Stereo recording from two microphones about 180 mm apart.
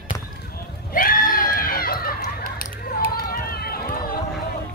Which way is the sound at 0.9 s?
50° left (ahead or behind).